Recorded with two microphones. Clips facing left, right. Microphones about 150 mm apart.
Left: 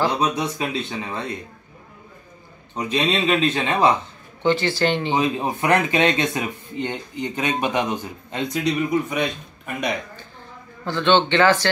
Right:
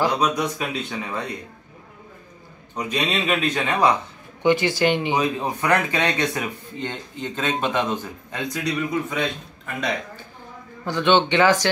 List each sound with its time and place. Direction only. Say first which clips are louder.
0.4 s speech: left 1 dB; 25° left (ahead or behind)
2.7 s speech: left 3 dB; 30° left (ahead or behind)
4.4 s speech: right 1 dB; 15° right (ahead or behind)
5.1 s speech: left 1 dB; 20° left (ahead or behind)
10.9 s speech: even; 10° right (ahead or behind)